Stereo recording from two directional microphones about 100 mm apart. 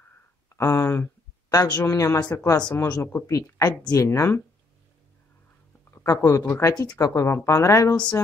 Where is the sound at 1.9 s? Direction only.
25° left (ahead or behind).